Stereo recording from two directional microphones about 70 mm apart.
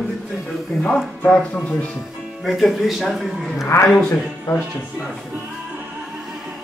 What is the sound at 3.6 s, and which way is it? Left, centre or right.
Speech, left.